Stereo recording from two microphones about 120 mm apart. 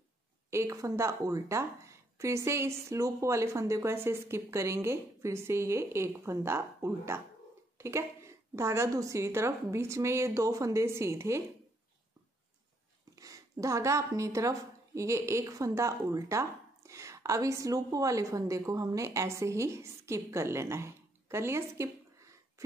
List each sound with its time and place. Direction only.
0.5 s a woman's voice: 25° right (ahead or behind)
13.1 s a woman's voice: 30° right (ahead or behind)